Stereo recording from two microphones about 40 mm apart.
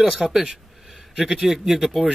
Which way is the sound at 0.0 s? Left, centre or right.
Centre.